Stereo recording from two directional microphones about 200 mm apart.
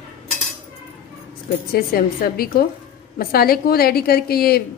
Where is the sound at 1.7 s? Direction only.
50° left (ahead or behind).